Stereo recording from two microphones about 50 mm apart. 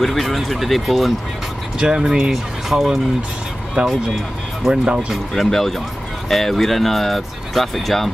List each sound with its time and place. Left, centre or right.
0.0 s speech: centre
1.9 s speech: centre
2.3 s speech: centre
4.6 s speech: centre
5.3 s speech: centre